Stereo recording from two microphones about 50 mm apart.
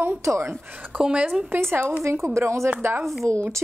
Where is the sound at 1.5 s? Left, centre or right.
Right.